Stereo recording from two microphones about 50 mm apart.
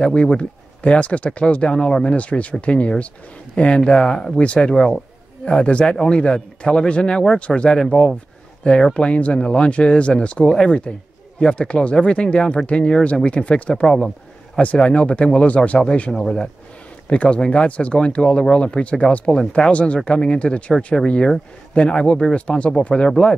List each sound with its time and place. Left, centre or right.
0.0 s speech: left
7.8 s speech: centre
13.8 s speech: centre
14.6 s speech: left
16.1 s speech: centre
17.1 s speech: left
20.7 s speech: centre
21.7 s speech: left